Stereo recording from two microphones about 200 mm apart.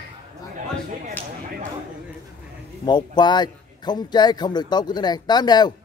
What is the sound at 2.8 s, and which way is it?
A man's voice, 20° left (ahead or behind).